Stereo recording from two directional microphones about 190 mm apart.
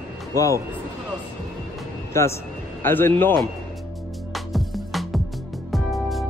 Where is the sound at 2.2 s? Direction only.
15° left (ahead or behind).